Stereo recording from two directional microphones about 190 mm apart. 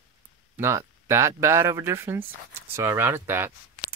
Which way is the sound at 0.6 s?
15° right (ahead or behind).